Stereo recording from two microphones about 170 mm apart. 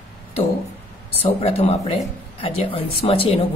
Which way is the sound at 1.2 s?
35° left (ahead or behind).